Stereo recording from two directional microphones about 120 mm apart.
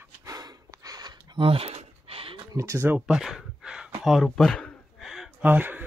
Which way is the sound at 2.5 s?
25° right (ahead or behind).